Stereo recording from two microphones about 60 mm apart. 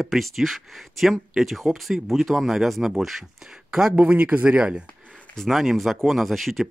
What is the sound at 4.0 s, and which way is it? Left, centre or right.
Speech, right.